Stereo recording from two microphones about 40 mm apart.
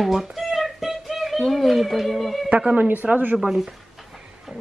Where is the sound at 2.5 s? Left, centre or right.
Right.